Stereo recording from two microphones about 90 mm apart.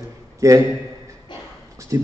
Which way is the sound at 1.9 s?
40° right (ahead or behind).